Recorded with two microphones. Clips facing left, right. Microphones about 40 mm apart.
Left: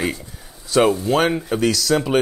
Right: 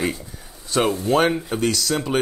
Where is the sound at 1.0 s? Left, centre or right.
Centre.